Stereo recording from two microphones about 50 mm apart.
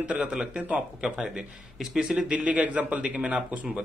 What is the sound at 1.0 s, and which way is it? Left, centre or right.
Speech, centre.